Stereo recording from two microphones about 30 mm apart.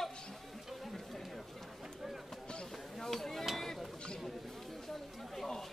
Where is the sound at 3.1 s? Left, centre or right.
Centre.